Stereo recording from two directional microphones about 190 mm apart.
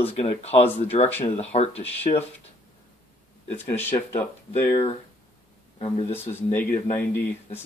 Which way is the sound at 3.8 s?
10° left (ahead or behind).